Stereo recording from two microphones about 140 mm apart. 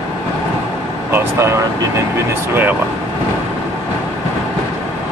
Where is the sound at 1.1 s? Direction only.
20° right (ahead or behind).